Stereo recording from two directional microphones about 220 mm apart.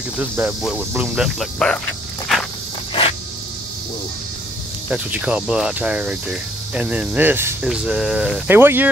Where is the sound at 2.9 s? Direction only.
25° left (ahead or behind).